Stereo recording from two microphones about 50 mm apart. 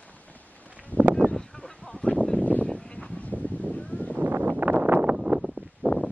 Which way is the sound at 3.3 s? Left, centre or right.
Left.